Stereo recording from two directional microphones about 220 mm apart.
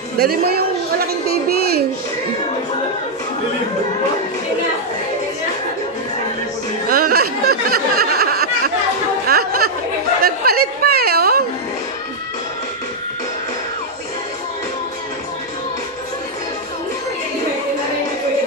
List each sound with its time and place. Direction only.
0.2 s a woman's voice: 45° right (ahead or behind)
6.9 s a sound: 40° right (ahead or behind)
9.3 s chatter: 45° right (ahead or behind)
10.2 s a woman's voice: 45° right (ahead or behind)